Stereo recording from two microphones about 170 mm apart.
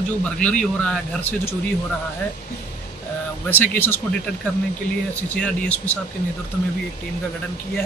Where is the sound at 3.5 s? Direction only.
10° left (ahead or behind).